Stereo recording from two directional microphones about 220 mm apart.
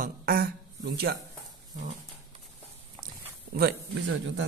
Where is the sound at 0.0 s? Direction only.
40° right (ahead or behind).